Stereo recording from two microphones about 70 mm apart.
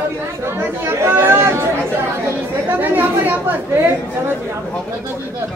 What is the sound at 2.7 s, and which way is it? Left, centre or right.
A woman's voice, right.